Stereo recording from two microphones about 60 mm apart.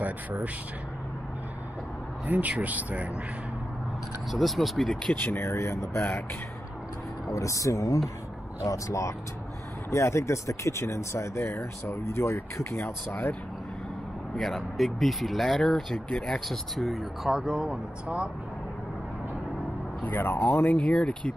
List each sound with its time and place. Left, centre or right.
0.0 s speech: right
2.2 s speech: right
4.3 s speech: centre
5.1 s speech: left
5.5 s speech: left
7.3 s speech: left
14.3 s speech: centre
16.1 s speech: centre
16.3 s speech: centre
18.0 s speech: centre
20.0 s speech: left